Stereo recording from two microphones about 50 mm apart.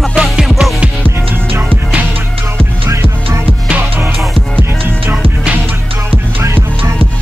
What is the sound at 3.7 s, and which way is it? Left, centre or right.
Music, right.